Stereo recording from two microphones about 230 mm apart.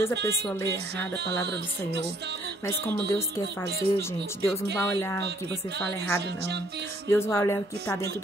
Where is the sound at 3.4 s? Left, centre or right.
Right.